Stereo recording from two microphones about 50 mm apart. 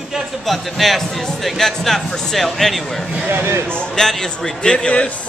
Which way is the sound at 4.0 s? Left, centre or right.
Centre.